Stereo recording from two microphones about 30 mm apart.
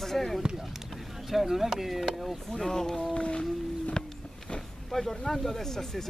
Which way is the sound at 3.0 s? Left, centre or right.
Left.